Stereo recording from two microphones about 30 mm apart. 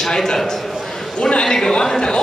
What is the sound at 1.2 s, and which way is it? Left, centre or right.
Speech, left.